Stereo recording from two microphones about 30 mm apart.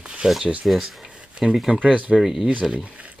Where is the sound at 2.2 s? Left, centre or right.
Centre.